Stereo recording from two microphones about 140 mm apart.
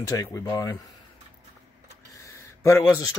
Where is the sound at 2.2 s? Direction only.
20° left (ahead or behind).